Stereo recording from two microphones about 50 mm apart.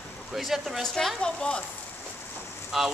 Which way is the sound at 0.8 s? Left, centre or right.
Centre.